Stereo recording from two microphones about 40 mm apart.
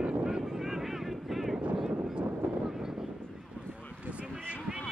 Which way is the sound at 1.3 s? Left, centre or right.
Centre.